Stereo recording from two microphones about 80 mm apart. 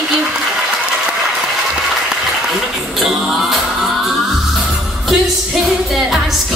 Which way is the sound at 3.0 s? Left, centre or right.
Centre.